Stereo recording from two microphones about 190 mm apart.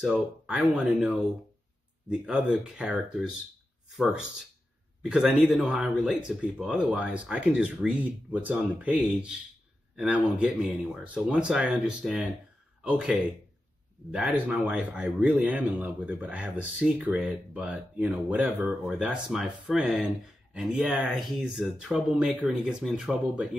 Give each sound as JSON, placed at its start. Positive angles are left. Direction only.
{"t": 0.0, "sound": "speech", "side_deg": -5}